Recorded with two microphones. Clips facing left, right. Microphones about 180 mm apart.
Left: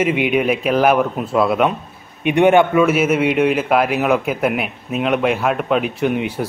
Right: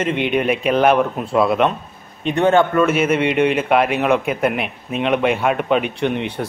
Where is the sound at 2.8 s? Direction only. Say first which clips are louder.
Left 1 dB; 5° left (ahead or behind).